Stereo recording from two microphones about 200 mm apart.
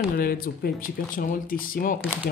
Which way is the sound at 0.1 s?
50° left (ahead or behind).